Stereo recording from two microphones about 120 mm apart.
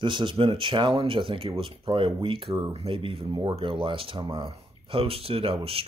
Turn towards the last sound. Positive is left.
turn(degrees=-50)  # may be behind; listen again after turning